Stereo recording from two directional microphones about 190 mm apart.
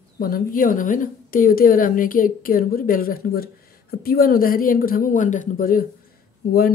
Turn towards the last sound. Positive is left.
turn(degrees=55)  # may be behind; listen again after turning